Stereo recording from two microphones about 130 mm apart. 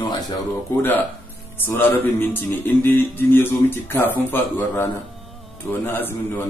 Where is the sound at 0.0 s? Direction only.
35° left (ahead or behind).